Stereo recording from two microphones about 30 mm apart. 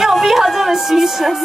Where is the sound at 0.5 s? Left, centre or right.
Centre.